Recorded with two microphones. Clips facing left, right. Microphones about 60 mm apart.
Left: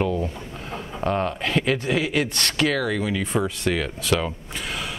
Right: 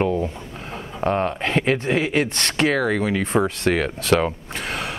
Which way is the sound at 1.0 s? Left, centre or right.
Right.